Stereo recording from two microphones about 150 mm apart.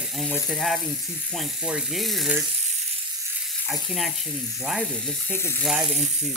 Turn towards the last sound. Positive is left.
turn(degrees=15)  # may be behind; listen again after turning